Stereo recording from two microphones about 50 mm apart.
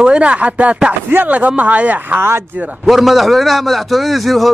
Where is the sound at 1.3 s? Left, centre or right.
Right.